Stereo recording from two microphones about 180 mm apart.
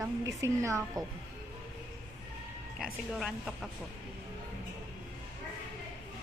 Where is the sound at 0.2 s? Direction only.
20° right (ahead or behind).